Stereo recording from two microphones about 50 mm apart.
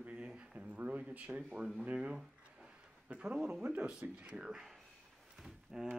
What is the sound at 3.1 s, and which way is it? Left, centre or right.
Speech, right.